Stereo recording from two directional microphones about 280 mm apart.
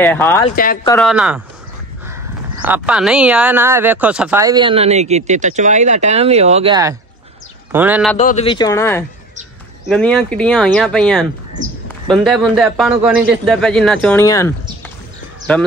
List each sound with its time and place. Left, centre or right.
0.0 s speech: centre
2.6 s speech: centre
8.2 s speech: left
15.5 s speech: centre